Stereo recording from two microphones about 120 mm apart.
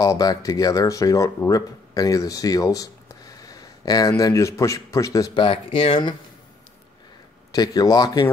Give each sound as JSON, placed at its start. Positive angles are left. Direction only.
{"t": 0.0, "sound": "speech", "side_deg": 30}
{"t": 5.3, "sound": "speech", "side_deg": 45}
{"t": 7.5, "sound": "speech", "side_deg": 30}